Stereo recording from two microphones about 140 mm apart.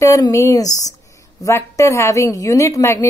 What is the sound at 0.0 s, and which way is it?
Speech, 20° left (ahead or behind).